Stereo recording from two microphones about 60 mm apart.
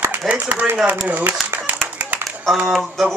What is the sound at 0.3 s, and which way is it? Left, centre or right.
Speech, right.